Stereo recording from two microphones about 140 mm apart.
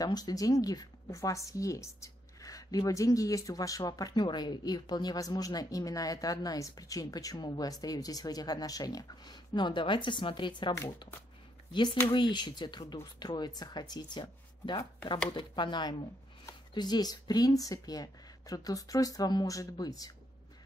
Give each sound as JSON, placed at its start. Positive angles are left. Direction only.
{"t": 0.0, "sound": "speech", "side_deg": 25}
{"t": 11.7, "sound": "speech", "side_deg": 35}